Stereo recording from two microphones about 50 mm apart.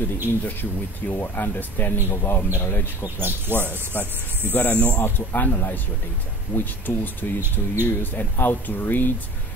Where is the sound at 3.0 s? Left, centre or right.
Right.